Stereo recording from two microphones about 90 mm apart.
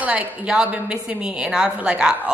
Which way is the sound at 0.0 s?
15° right (ahead or behind).